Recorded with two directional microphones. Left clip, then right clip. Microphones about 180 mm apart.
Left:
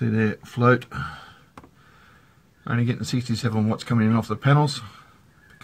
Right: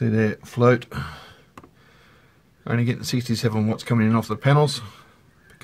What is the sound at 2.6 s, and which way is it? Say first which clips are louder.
Speech: right 2 dB; 40° right (ahead or behind).